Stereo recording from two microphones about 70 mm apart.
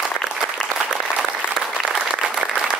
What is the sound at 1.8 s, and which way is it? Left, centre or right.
Applause, centre.